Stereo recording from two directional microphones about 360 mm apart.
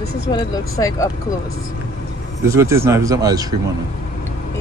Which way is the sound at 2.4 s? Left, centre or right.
Centre.